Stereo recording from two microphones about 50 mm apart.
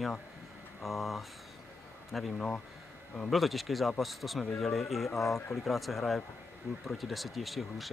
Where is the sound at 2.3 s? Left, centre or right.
Centre.